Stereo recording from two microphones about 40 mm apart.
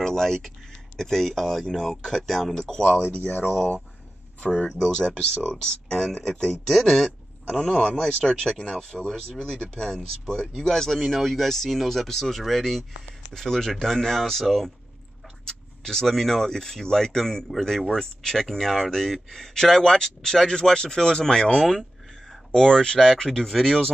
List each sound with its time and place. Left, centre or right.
0.0 s a sound: centre
0.9 s speech: centre
2.7 s speech: centre
4.7 s speech: centre